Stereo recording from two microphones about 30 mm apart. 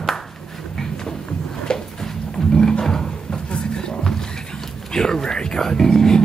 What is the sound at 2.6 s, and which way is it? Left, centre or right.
Music, left.